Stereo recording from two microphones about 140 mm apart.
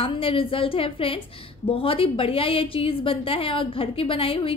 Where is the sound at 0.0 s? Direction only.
40° left (ahead or behind).